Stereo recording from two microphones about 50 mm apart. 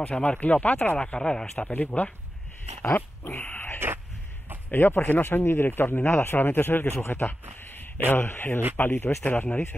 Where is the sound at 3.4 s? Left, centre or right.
Left.